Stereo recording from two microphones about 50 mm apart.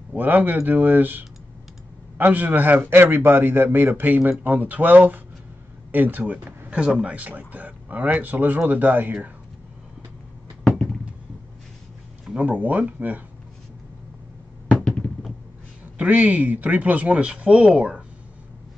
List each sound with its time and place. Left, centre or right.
0.1 s speech: right
2.9 s speech: right
12.4 s speech: right
16.0 s speech: right